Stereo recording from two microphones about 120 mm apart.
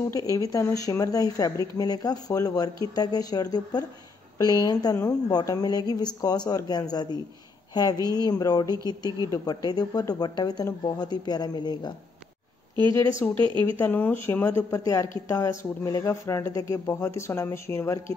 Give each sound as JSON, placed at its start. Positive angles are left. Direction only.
{"t": 0.1, "sound": "a woman's voice", "side_deg": 30}
{"t": 13.2, "sound": "speech", "side_deg": 15}